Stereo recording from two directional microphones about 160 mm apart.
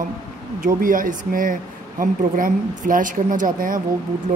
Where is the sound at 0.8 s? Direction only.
60° right (ahead or behind).